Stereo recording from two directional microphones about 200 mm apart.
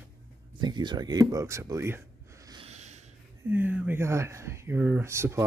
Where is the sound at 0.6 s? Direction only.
20° right (ahead or behind).